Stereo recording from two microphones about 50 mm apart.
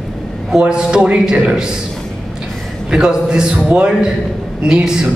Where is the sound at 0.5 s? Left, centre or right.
Centre.